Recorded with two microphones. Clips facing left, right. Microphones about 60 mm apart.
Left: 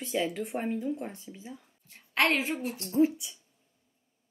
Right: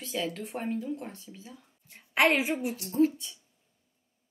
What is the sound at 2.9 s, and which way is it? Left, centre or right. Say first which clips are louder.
Speech: left 1 dB; centre.